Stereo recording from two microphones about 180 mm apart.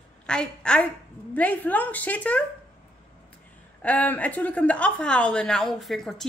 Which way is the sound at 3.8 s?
10° left (ahead or behind).